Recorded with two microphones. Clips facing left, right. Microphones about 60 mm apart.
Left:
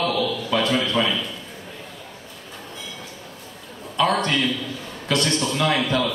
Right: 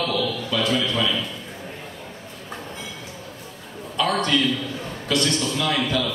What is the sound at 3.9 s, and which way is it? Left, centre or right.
Speech, left.